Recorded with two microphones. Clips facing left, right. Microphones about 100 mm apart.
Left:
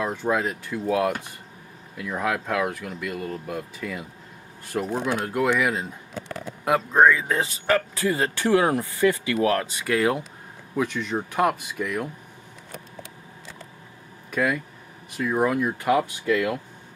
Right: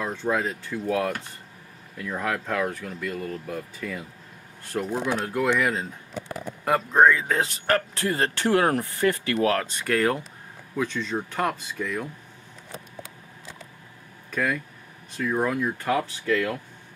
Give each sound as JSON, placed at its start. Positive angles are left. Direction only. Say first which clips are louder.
{"t": 0.0, "sound": "speech", "louder": "left 2 dB", "side_deg": 10}
{"t": 14.3, "sound": "speech", "louder": "left 2 dB", "side_deg": 10}